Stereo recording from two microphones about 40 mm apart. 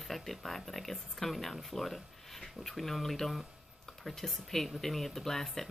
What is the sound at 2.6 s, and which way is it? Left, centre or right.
Speech, centre.